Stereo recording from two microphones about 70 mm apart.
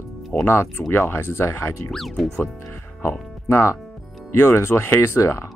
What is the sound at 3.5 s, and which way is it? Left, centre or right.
Speech, left.